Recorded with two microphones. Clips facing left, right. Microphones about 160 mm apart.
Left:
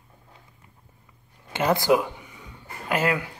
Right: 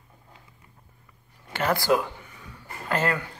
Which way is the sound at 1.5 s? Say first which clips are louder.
Left 3 dB; 20° left (ahead or behind).